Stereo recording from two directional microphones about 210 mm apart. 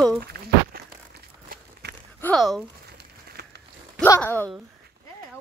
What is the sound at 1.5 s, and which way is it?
Walk, 50° right (ahead or behind).